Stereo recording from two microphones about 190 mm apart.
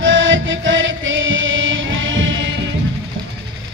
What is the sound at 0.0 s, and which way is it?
Music, 90° right.